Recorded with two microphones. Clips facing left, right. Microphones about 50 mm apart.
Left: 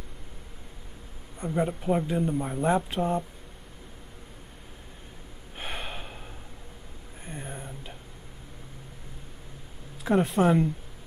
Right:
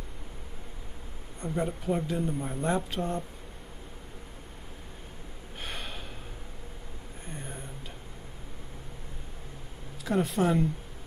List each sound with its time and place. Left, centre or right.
1.4 s speech: centre
5.6 s gasp: centre
7.2 s a sound: centre
10.2 s speech: centre